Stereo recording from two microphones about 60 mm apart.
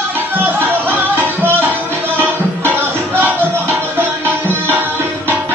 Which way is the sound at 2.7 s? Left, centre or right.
Right.